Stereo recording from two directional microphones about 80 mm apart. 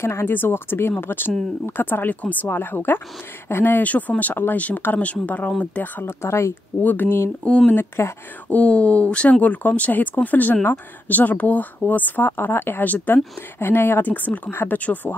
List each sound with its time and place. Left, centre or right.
0.0 s speech: left
6.8 s speech: left
7.4 s speech: centre
7.7 s speech: left
8.5 s speech: centre